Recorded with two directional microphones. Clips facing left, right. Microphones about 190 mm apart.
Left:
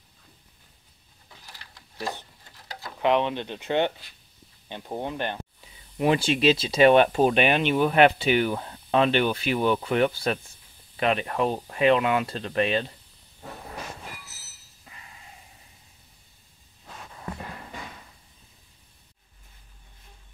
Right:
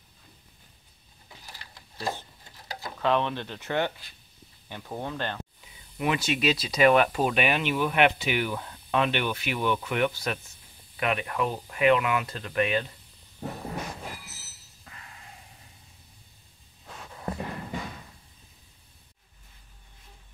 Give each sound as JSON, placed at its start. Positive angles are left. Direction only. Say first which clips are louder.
{"t": 1.4, "sound": "sewing machine", "louder": "right 1 dB", "side_deg": -10}
{"t": 3.0, "sound": "speech", "louder": "left 3 dB", "side_deg": 15}
{"t": 5.9, "sound": "speech", "louder": "left 5 dB", "side_deg": 30}